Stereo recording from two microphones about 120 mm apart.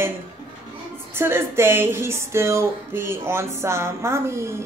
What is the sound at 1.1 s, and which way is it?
Speech, 20° right (ahead or behind).